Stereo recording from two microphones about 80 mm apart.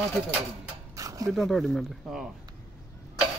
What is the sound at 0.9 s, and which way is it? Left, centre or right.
Dog, right.